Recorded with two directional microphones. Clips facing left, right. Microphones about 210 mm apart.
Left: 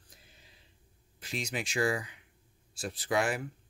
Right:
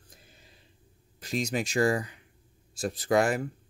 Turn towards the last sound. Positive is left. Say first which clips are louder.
# right 6 dB
turn(degrees=-45)  # may be behind; listen again after turning